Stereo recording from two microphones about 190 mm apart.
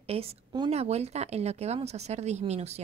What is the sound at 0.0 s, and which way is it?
A woman's voice, 30° right (ahead or behind).